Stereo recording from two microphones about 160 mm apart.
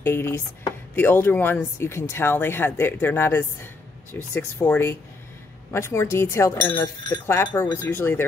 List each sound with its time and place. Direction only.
0.0 s speech: 15° left (ahead or behind)